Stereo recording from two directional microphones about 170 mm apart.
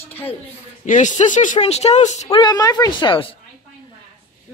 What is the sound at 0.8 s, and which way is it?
Speech, 45° left (ahead or behind).